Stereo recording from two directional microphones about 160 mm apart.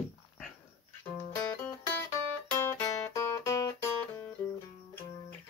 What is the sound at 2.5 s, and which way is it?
Music, 15° left (ahead or behind).